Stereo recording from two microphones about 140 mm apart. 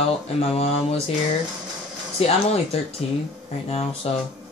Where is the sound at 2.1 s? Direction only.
45° left (ahead or behind).